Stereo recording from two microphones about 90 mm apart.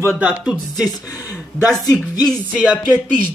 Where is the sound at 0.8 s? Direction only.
45° left (ahead or behind).